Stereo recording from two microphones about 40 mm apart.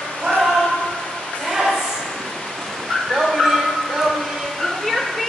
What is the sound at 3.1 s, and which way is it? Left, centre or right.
Bow-wow, centre.